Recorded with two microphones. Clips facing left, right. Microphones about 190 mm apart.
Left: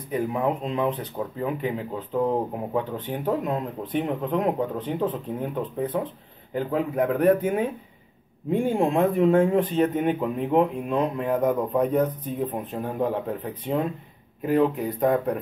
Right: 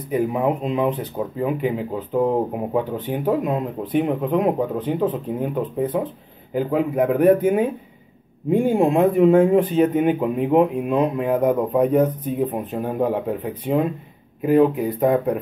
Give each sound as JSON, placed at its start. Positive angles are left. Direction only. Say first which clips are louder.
{"t": 0.1, "sound": "speech", "louder": "right 4 dB", "side_deg": -10}